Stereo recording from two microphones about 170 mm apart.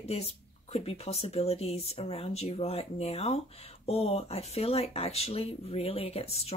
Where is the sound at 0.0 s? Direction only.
35° left (ahead or behind).